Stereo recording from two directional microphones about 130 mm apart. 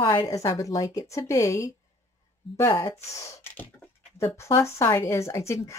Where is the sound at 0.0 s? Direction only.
40° left (ahead or behind).